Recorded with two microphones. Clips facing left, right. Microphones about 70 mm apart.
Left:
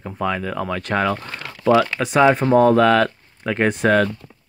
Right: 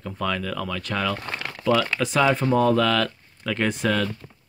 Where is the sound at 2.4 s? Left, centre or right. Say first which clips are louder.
Left 6 dB; left.